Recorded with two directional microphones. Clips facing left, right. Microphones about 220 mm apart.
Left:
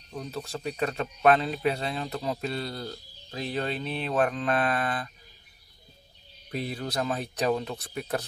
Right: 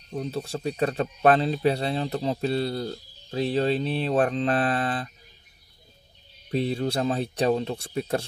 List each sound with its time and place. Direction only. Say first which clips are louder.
0.1 s speech: right 5 dB; 30° right (ahead or behind)
6.5 s speech: right 6 dB; 30° right (ahead or behind)